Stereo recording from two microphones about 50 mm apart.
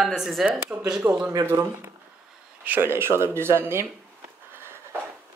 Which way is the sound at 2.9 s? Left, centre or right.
Right.